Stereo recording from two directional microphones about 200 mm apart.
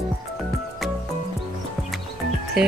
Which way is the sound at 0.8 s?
Centre (ahead or behind).